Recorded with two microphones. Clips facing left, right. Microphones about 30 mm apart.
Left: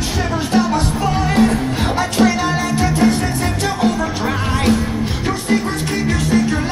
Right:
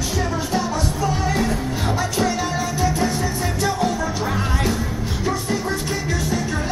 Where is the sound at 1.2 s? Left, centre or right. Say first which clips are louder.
Left 6 dB; left.